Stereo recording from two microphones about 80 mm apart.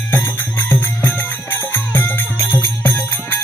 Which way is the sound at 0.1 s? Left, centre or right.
Left.